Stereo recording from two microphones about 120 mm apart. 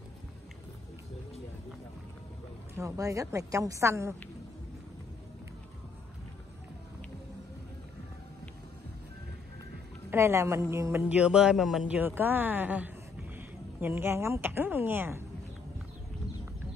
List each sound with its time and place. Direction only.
2.8 s speech: 25° right (ahead or behind)
10.1 s speech: 20° right (ahead or behind)